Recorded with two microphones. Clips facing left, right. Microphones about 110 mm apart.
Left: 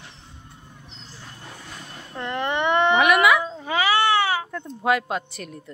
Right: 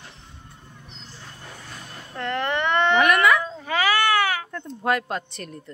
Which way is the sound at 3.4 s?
20° left (ahead or behind).